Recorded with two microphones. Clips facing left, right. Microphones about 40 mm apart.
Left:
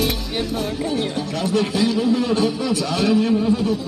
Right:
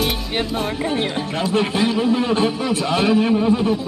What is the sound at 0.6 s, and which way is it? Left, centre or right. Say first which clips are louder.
Speech: right 1 dB; right.